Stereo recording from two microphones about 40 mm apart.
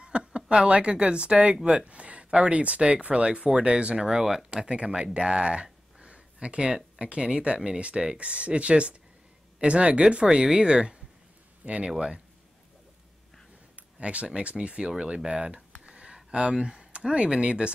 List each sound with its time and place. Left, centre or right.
0.0 s a sound: right
0.5 s speech: right
4.2 s speech: centre
4.5 s speech: right
10.2 s speech: centre
13.9 s speech: right
14.9 s a sound: centre
16.3 s speech: right